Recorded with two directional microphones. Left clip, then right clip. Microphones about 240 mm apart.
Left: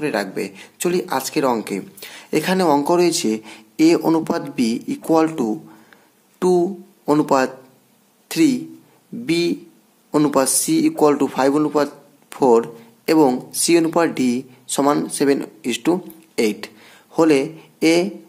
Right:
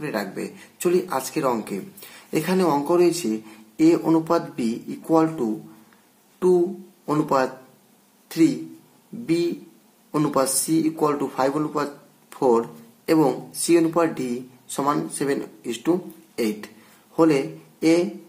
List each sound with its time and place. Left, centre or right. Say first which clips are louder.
0.0 s speech: left 6 dB; left
7.1 s speech: left 5 dB; left